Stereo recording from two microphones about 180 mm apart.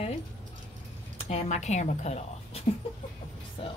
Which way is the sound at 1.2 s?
35° left (ahead or behind).